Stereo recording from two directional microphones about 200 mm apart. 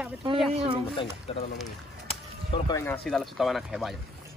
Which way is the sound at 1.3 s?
30° left (ahead or behind).